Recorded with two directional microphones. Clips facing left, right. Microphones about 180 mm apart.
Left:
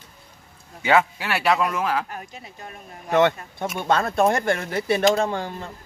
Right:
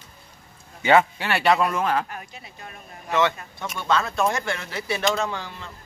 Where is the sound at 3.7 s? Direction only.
50° left (ahead or behind).